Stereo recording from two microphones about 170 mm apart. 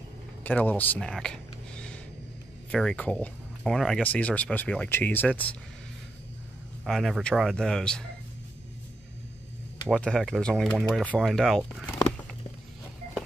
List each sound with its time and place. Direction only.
0.4 s speech: 10° left (ahead or behind)
6.8 s speech: centre (ahead or behind)
9.8 s speech: 5° left (ahead or behind)